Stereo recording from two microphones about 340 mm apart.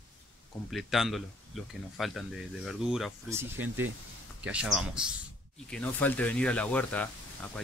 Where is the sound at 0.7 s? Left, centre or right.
Centre.